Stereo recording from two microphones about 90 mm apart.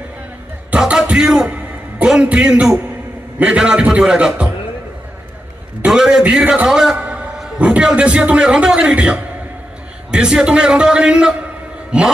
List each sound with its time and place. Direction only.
0.7 s music: 10° right (ahead or behind)
1.5 s a man's voice: 15° right (ahead or behind)
5.9 s a man's voice: 5° right (ahead or behind)